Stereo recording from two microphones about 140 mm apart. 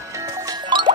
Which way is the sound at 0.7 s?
30° right (ahead or behind).